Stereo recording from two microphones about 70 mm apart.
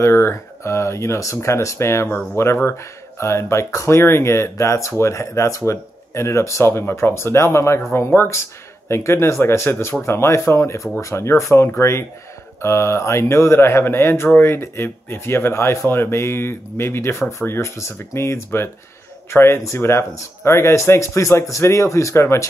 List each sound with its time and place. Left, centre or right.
0.0 s speech: left
6.7 s speech: left